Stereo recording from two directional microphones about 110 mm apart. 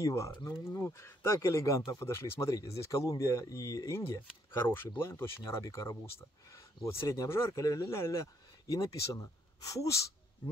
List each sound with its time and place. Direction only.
0.0 s speech: 30° left (ahead or behind)